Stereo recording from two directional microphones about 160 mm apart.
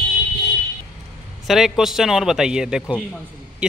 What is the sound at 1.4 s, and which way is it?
A man's voice, centre (ahead or behind).